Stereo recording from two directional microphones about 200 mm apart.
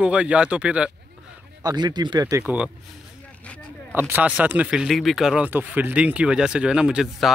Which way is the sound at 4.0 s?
10° right (ahead or behind).